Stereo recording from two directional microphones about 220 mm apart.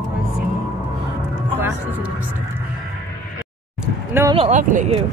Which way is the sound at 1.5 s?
10° right (ahead or behind).